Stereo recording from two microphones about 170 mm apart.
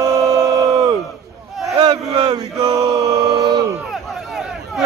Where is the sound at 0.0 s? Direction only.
20° right (ahead or behind).